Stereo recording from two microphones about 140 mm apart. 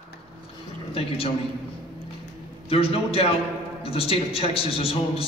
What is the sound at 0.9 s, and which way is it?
Speech, 45° left (ahead or behind).